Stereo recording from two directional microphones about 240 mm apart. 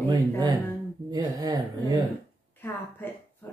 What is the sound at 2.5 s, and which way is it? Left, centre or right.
Speech, centre.